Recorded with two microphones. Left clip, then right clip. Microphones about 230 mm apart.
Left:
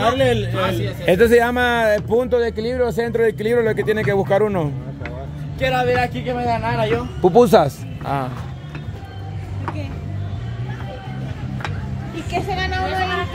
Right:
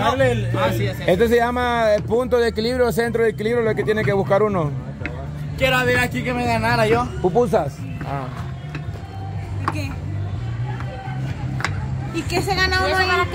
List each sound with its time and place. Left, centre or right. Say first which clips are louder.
0.0 s a man's voice: left 2 dB; left
1.0 s speech: left 3 dB; centre
2.3 s speech: even; centre
5.6 s a man's voice: even; right
7.2 s speech: left 6 dB; left
12.3 s a man's voice: right 3 dB; right